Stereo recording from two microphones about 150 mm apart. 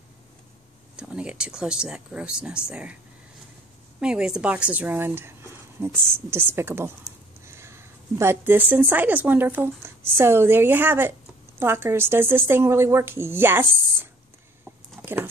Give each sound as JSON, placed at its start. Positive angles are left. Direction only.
{"t": 0.9, "sound": "a woman's voice", "side_deg": -5}
{"t": 4.0, "sound": "a woman's voice", "side_deg": -5}